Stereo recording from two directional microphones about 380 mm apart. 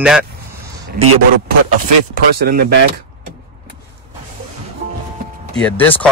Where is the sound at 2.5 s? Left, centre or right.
Right.